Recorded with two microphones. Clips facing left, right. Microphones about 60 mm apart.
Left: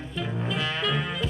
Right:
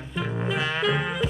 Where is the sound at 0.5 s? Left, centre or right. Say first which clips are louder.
Right 3 dB; right.